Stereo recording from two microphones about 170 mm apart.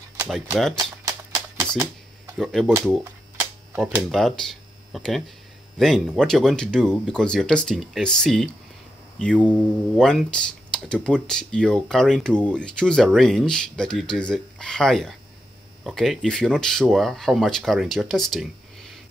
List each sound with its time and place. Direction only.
0.2 s speech: centre (ahead or behind)
0.7 s typewriter: 20° right (ahead or behind)
2.3 s speech: centre (ahead or behind)
3.7 s speech: 5° right (ahead or behind)